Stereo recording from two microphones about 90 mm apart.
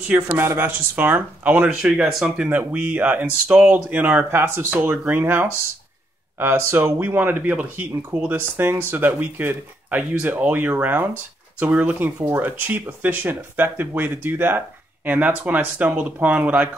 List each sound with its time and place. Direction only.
0.3 s speech: 25° right (ahead or behind)
1.9 s speech: 5° right (ahead or behind)